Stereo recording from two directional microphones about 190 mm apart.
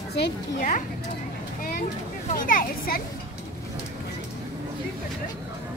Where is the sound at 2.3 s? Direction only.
50° left (ahead or behind).